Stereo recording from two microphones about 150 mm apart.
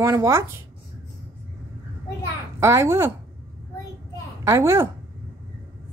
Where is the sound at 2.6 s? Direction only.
20° right (ahead or behind).